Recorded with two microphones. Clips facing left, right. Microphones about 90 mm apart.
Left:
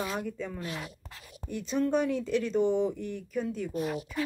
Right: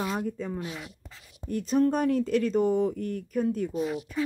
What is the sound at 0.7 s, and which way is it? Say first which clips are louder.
Speech: left 1 dB; 65° left (ahead or behind).